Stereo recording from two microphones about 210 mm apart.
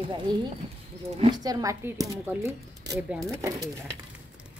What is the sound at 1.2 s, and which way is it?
Speech, 20° right (ahead or behind).